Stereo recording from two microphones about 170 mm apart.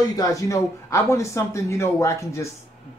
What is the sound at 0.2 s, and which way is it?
Speech, 20° left (ahead or behind).